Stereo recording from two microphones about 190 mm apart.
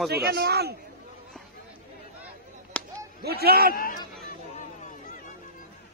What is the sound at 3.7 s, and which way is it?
Speech, 50° left (ahead or behind).